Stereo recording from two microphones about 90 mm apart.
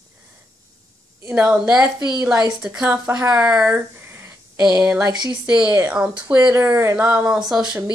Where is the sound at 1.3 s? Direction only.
10° right (ahead or behind).